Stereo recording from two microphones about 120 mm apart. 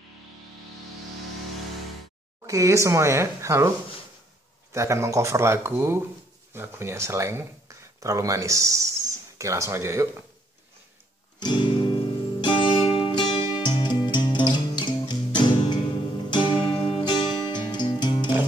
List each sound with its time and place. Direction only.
2.4 s speech: 25° right (ahead or behind)
4.7 s speech: 25° right (ahead or behind)
11.3 s music: 40° left (ahead or behind)
17.0 s music: 40° left (ahead or behind)